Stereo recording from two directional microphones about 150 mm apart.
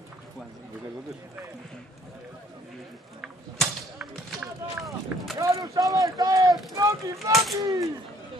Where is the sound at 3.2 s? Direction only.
5° right (ahead or behind).